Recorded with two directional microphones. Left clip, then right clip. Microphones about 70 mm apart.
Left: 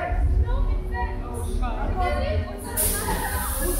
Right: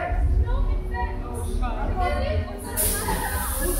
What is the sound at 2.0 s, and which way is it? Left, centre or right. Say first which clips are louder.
Speech: even; left.